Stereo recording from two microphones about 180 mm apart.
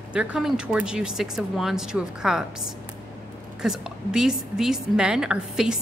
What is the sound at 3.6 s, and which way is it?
A woman's voice, 5° right (ahead or behind).